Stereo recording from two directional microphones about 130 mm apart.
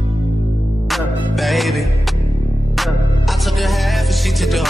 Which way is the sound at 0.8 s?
Centre (ahead or behind).